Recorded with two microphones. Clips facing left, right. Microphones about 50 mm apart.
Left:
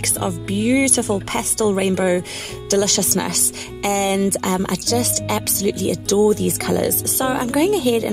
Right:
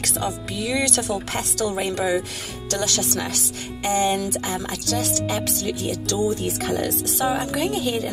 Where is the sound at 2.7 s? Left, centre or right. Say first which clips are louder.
Left 7 dB; left.